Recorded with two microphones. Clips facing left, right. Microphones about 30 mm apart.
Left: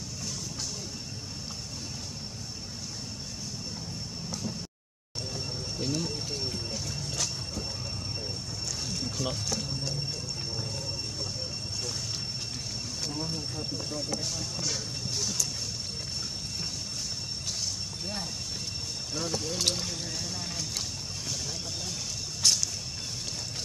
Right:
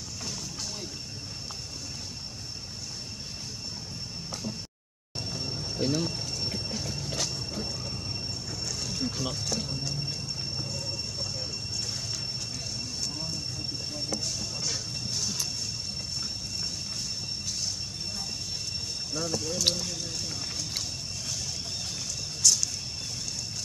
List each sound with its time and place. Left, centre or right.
5.3 s a sound: centre
7.1 s vehicle: right
8.8 s a sound: centre
13.6 s speech: centre
19.1 s speech: left
22.4 s vehicle: left